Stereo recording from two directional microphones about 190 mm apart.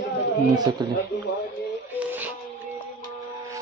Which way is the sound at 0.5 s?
20° right (ahead or behind).